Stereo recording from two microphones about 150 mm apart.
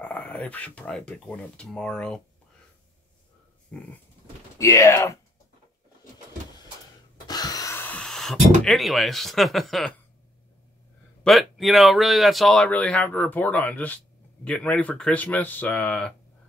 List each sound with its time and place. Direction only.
0.0 s speech: 10° left (ahead or behind)
3.7 s speech: 5° left (ahead or behind)
4.6 s speech: 20° left (ahead or behind)
7.2 s a sound: 25° left (ahead or behind); by 8.4 s centre (ahead or behind)
8.6 s speech: centre (ahead or behind)
11.2 s speech: centre (ahead or behind)